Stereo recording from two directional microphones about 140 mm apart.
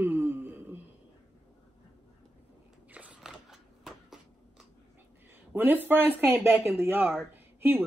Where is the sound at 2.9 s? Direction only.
10° right (ahead or behind).